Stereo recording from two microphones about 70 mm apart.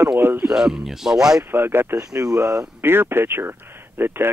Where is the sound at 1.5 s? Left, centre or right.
Right.